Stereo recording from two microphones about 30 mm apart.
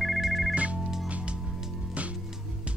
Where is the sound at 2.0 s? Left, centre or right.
Right.